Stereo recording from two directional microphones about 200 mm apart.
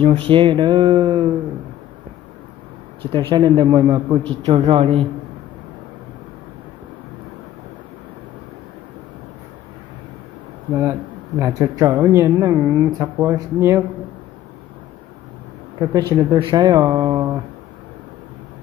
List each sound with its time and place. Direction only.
0.0 s a man's voice: 25° right (ahead or behind)
3.1 s a man's voice: 20° right (ahead or behind)
10.7 s speech: 15° right (ahead or behind)
15.8 s a man's voice: 20° right (ahead or behind)